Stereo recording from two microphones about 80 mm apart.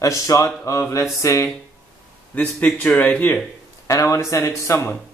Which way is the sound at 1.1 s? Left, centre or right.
Left.